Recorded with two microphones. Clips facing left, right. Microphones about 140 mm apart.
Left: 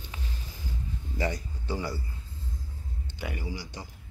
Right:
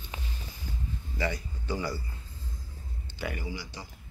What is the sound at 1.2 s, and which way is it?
Speech, 40° left (ahead or behind).